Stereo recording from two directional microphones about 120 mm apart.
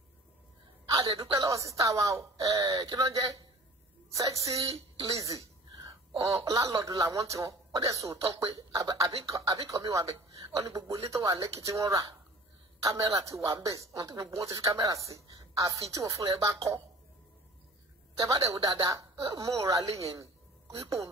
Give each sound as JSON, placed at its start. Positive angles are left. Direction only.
{"t": 1.2, "sound": "speech", "side_deg": -25}
{"t": 18.2, "sound": "speech", "side_deg": -25}
{"t": 20.0, "sound": "a sound", "side_deg": -25}